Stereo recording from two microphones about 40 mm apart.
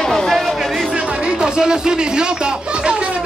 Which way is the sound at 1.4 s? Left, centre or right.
Centre.